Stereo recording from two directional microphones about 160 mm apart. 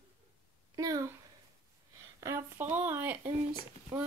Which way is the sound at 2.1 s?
15° right (ahead or behind).